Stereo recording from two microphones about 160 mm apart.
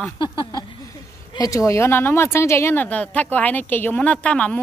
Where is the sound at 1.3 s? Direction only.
20° left (ahead or behind).